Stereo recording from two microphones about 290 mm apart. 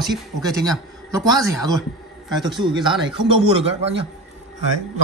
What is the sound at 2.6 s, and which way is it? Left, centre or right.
A man's voice, centre.